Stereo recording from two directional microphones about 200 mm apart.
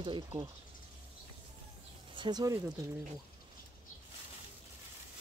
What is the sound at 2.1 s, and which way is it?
Speech, 20° right (ahead or behind).